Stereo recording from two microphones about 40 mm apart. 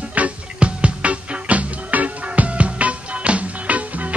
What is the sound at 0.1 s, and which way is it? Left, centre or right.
Music, right.